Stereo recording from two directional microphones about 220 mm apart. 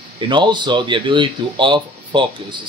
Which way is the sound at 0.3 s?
20° right (ahead or behind).